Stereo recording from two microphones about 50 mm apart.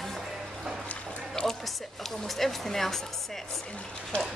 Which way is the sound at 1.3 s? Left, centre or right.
Centre.